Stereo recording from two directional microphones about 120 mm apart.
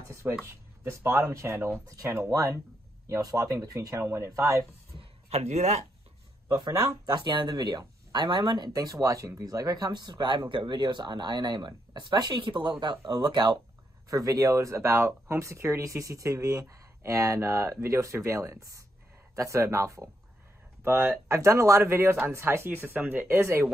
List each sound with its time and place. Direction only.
0.1 s speech: 20° right (ahead or behind)
5.3 s speech: 65° right (ahead or behind)
6.5 s speech: 35° right (ahead or behind)